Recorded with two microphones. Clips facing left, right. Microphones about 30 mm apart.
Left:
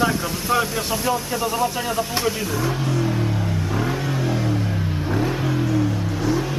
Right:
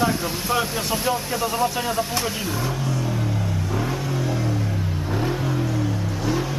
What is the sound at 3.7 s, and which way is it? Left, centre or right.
Vehicle, centre.